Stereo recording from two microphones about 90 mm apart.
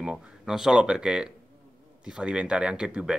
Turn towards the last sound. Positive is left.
turn(degrees=-10)  # may be behind; listen again after turning